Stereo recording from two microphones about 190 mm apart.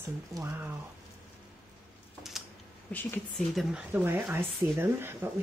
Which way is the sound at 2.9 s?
5° left (ahead or behind).